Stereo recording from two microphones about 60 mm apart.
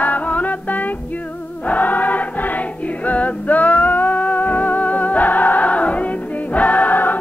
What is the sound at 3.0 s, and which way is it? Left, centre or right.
Music, left.